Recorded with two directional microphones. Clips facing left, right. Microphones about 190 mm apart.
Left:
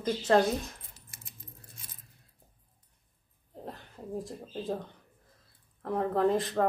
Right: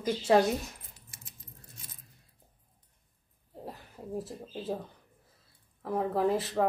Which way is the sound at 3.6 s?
5° right (ahead or behind).